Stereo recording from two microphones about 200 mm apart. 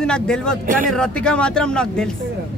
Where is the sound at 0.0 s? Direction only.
5° left (ahead or behind).